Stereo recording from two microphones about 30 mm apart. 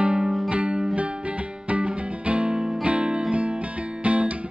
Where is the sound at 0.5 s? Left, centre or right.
Right.